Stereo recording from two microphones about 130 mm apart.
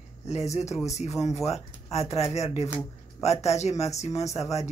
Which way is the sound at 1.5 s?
55° left (ahead or behind).